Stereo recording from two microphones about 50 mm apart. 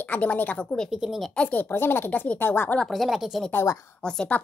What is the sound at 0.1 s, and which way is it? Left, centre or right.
Speech, left.